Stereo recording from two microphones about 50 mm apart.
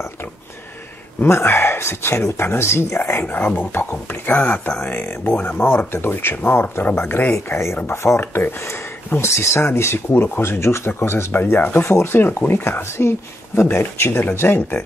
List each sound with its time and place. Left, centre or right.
1.2 s speech: left
7.4 s speech: left
8.2 s speech: left